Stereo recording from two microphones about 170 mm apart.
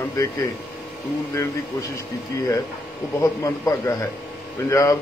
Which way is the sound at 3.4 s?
20° left (ahead or behind).